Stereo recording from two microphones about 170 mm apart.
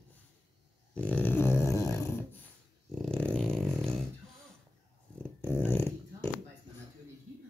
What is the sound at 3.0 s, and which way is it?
Dog, 5° left (ahead or behind).